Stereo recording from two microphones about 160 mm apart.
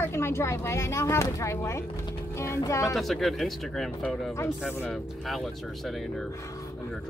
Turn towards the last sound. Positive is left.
turn(degrees=0)  # may be behind; listen again after turning